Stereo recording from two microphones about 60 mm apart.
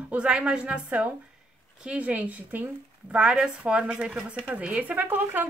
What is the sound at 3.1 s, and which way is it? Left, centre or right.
A woman's voice, centre.